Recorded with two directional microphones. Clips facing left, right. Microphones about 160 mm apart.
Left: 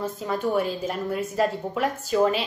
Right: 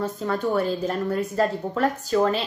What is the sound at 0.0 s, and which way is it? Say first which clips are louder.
Speech: right 2 dB; 10° left (ahead or behind).